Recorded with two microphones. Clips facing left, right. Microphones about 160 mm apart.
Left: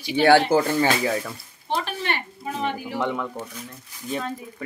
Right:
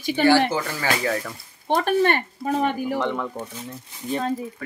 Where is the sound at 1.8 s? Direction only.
50° right (ahead or behind).